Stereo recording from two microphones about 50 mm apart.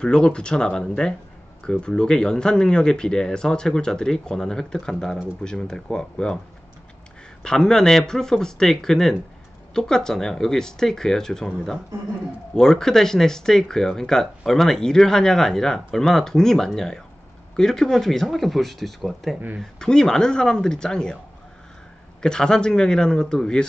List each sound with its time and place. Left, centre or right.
0.0 s speech: centre
7.4 s speech: centre
19.6 s speech: centre
22.2 s speech: centre